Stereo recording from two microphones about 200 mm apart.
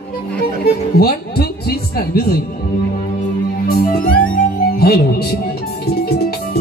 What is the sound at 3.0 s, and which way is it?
Music, 50° left (ahead or behind).